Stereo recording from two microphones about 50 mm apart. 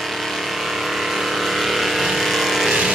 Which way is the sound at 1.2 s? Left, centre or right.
Centre.